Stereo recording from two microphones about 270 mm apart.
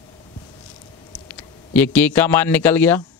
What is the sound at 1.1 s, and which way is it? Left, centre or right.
Speech, centre.